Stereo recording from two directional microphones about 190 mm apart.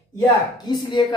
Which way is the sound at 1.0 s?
25° left (ahead or behind).